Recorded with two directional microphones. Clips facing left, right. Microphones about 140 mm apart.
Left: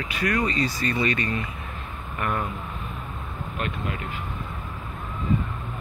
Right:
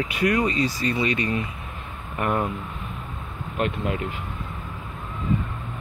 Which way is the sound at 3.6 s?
20° right (ahead or behind).